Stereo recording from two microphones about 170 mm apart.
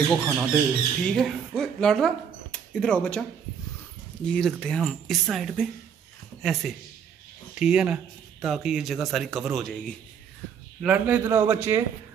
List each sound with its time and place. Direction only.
0.1 s speech: centre (ahead or behind)
10.8 s a man's voice: 10° right (ahead or behind)